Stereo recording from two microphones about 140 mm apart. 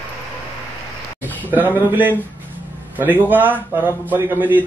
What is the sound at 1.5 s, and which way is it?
A man's voice, 10° right (ahead or behind).